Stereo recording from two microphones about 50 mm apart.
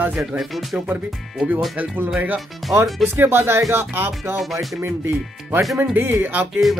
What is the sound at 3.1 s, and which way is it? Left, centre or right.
Speech, right.